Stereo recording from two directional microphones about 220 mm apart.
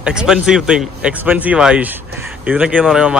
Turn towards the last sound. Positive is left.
turn(degrees=-5)  # may be behind; listen again after turning